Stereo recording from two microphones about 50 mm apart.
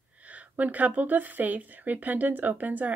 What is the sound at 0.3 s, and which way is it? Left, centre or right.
Speech, right.